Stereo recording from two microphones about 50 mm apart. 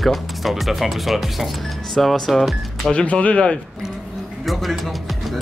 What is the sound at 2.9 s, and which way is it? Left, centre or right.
Speech, left.